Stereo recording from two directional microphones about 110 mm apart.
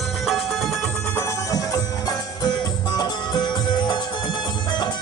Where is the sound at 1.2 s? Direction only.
30° left (ahead or behind).